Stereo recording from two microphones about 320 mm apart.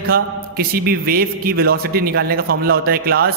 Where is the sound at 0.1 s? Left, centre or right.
Right.